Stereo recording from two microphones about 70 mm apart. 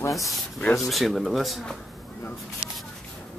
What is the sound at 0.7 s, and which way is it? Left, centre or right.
Speech, centre.